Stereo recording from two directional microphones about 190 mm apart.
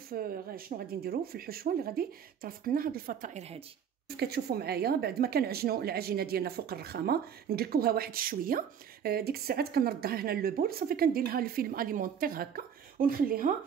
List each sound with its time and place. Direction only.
0.1 s speech: 50° right (ahead or behind); by 3.6 s 35° right (ahead or behind)
4.2 s speech: 55° right (ahead or behind)